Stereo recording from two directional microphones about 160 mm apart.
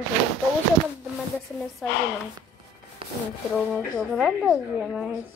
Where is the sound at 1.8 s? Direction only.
5° left (ahead or behind).